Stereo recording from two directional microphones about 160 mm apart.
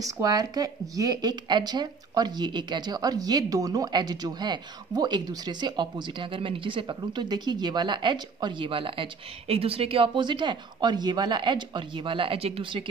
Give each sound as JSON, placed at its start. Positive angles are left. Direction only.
{"t": 0.0, "sound": "speech", "side_deg": -20}